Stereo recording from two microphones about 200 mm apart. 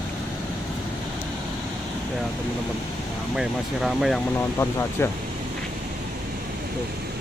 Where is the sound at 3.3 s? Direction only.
Centre (ahead or behind).